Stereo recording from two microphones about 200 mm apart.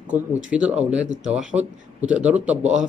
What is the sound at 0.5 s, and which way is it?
Speech, 5° right (ahead or behind).